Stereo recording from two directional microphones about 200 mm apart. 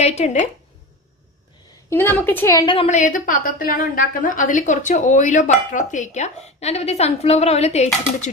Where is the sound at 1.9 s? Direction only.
10° left (ahead or behind).